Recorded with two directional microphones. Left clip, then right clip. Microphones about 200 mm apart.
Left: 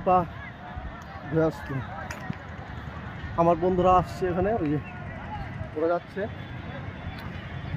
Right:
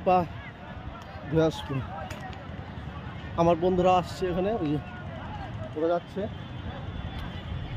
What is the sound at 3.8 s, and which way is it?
Speech, 5° left (ahead or behind).